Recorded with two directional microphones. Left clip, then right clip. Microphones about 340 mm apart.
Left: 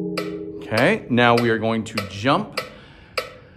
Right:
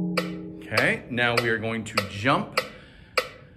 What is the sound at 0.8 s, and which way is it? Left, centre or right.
Speech, centre.